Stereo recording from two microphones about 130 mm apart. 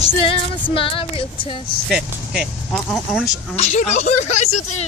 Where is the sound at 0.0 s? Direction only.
45° left (ahead or behind).